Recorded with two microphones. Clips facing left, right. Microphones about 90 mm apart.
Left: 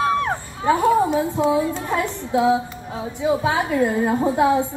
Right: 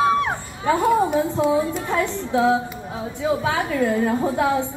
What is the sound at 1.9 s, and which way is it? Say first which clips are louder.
Speech: right 2 dB; 15° left (ahead or behind).